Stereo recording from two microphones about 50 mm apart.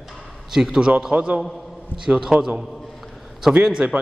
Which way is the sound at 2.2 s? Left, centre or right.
Centre.